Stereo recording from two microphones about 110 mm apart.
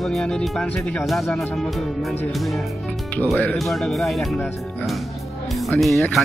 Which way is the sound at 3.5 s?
Centre (ahead or behind).